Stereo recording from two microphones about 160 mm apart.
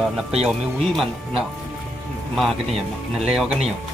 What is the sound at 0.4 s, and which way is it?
Speech, 5° right (ahead or behind).